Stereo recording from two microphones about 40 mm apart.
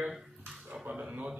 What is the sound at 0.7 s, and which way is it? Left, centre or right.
Speech, right.